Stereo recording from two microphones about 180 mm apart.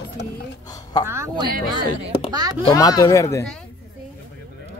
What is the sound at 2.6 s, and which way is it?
Speech, 20° left (ahead or behind).